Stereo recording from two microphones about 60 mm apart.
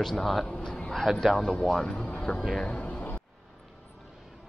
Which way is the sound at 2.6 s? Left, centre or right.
Left.